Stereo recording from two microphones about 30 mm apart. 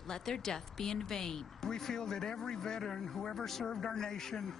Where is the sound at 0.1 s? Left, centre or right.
Centre.